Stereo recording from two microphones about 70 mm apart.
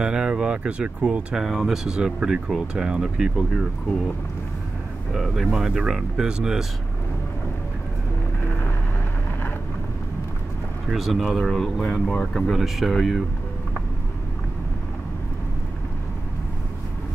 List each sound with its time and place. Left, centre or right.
0.0 s speech: centre
1.3 s speech: centre
1.9 s speech: centre
5.1 s speech: centre
10.9 s speech: centre
11.8 s speech: centre
12.5 s speech: centre